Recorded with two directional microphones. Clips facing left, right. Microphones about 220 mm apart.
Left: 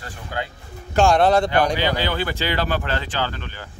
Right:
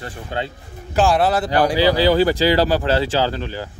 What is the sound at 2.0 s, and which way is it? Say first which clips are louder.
Speech: right 9 dB; 35° right (ahead or behind).